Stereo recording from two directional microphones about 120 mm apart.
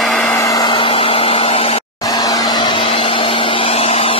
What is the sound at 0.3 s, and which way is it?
Vehicle, 25° left (ahead or behind).